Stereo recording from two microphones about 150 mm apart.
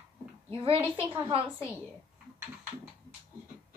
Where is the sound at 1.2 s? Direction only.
35° right (ahead or behind).